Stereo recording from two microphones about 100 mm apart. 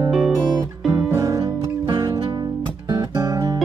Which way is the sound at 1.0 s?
35° right (ahead or behind).